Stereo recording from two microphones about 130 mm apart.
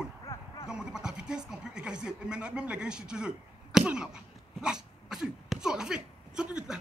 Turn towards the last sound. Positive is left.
turn(degrees=-5)  # may be behind; listen again after turning